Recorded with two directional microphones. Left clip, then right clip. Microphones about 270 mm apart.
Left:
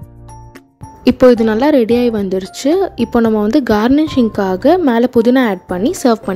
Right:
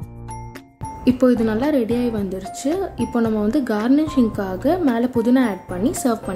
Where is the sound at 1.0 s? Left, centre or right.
Left.